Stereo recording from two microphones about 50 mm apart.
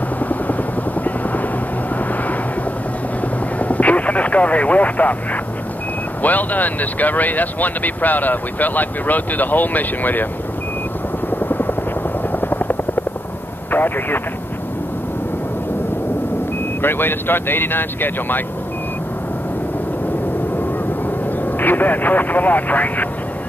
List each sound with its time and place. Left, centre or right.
0.2 s helicopter: left
3.5 s vehicle: left
6.2 s speech: left
11.3 s helicopter: left
13.7 s speech: left
16.8 s speech: left
21.5 s vehicle: left